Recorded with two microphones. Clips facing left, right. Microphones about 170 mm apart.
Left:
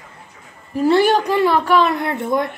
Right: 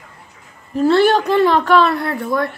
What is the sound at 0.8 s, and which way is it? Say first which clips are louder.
Speech: right 1 dB; 15° left (ahead or behind).